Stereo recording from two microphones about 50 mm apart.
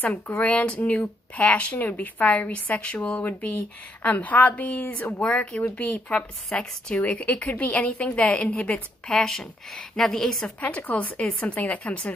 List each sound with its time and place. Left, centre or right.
0.0 s speech: left
0.4 s speech: left
5.2 s speech: left
5.6 s speech: left
6.1 s speech: left
7.0 s speech: left; by 10.5 s centre
10.9 s speech: left